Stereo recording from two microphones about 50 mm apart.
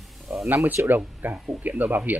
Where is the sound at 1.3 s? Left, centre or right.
Right.